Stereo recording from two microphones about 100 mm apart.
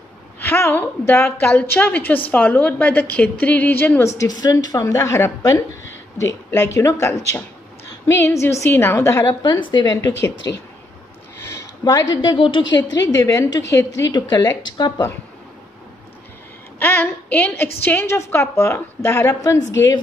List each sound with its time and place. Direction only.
0.4 s a woman's voice: 20° left (ahead or behind)
4.3 s a woman's voice: 40° left (ahead or behind)
11.8 s a woman's voice: 45° left (ahead or behind)
12.4 s a woman's voice: 55° left (ahead or behind); by 14.1 s 35° left (ahead or behind)
14.1 s a woman's voice: 45° left (ahead or behind)
16.8 s speech: 20° left (ahead or behind)